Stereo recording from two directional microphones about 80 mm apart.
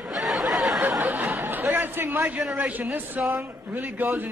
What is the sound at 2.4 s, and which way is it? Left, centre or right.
Speech, centre.